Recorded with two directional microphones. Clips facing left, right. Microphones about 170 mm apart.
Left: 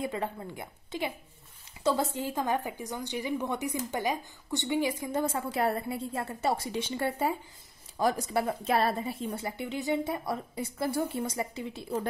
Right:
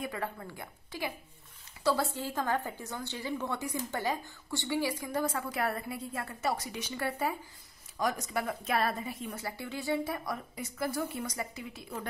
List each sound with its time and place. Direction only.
0.0 s a woman's voice: 20° left (ahead or behind)